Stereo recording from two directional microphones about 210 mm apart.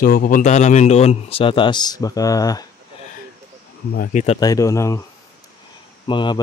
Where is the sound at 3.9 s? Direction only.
40° left (ahead or behind).